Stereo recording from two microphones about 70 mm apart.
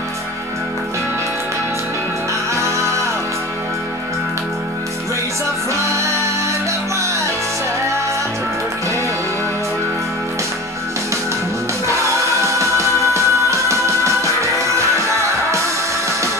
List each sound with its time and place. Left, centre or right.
2.5 s music: right
5.8 s music: right
11.9 s music: right